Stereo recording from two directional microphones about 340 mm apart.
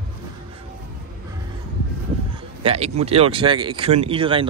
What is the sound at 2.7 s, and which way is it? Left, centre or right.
Speech, centre.